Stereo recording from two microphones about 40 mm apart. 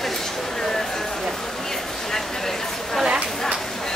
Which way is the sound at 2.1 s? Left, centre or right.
Centre.